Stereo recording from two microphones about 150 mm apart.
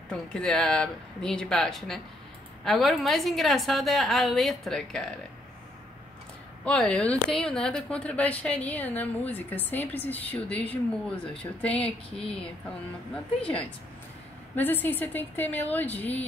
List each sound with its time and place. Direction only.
0.1 s a woman's voice: 5° left (ahead or behind)
6.6 s a woman's voice: 5° left (ahead or behind)